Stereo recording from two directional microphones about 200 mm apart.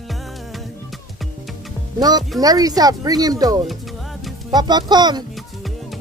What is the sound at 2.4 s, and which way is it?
Speech, 20° right (ahead or behind).